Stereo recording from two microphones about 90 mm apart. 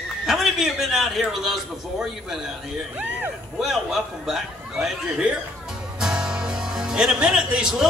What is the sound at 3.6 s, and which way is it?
A man's voice, centre (ahead or behind).